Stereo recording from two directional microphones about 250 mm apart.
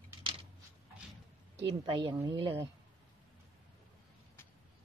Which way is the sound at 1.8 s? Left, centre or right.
Centre.